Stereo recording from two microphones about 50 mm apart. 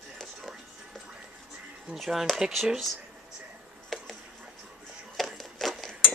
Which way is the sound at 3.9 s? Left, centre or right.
Centre.